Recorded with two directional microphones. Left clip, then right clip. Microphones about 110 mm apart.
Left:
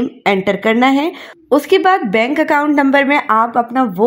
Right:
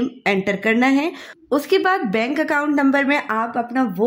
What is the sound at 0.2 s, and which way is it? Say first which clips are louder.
Speech: left 6 dB; 25° left (ahead or behind).